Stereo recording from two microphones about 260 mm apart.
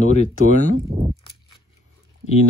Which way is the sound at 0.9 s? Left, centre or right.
Right.